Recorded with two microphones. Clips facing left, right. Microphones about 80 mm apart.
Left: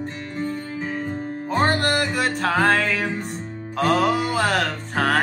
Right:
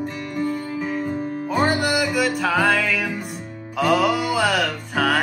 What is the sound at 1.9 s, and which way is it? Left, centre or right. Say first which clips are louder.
Music: right 2 dB; left.